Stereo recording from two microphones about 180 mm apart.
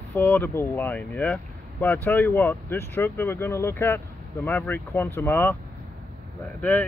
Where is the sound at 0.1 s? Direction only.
10° left (ahead or behind).